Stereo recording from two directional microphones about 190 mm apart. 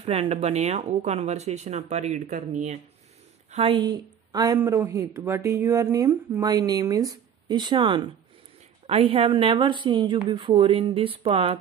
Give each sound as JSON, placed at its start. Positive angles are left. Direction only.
{"t": 0.0, "sound": "speech", "side_deg": -35}
{"t": 3.5, "sound": "speech", "side_deg": -25}